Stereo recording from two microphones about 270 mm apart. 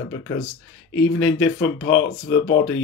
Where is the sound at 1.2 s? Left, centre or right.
Left.